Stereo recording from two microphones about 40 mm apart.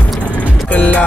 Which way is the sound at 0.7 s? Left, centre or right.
Left.